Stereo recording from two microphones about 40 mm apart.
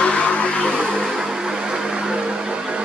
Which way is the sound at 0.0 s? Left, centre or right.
Left.